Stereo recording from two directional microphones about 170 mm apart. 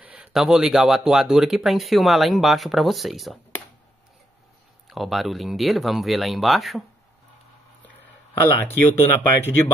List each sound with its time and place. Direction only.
0.0 s speech: 5° right (ahead or behind)
4.8 s speech: centre (ahead or behind)
8.6 s speech: 10° left (ahead or behind)